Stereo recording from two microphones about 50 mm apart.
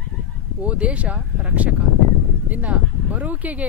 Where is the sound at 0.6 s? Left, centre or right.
Right.